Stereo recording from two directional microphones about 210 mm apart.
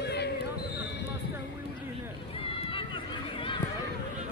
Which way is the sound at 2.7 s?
25° left (ahead or behind).